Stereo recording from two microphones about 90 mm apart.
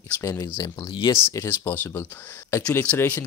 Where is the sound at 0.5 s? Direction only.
50° left (ahead or behind).